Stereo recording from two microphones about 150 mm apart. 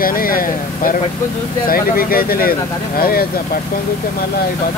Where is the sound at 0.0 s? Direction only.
70° left (ahead or behind).